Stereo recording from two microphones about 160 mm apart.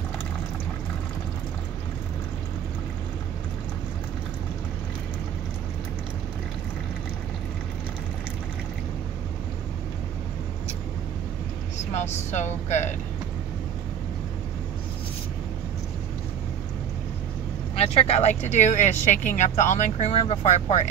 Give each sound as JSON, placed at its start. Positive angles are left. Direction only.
{"t": 11.9, "sound": "speech", "side_deg": 45}
{"t": 17.7, "sound": "speech", "side_deg": 40}